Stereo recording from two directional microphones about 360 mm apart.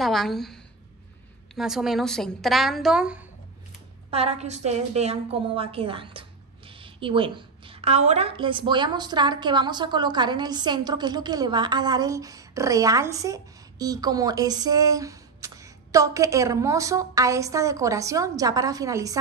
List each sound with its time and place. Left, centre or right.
0.0 s a woman's voice: centre
4.1 s a woman's voice: centre